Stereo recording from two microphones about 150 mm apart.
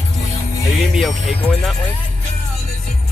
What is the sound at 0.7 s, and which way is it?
Speech, centre (ahead or behind).